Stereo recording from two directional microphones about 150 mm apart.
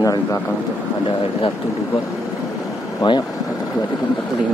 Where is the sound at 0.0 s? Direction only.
25° left (ahead or behind).